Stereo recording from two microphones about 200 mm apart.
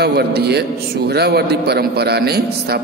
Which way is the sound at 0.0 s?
55° right (ahead or behind).